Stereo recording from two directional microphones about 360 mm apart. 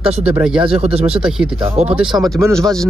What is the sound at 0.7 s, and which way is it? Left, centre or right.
Speech, centre.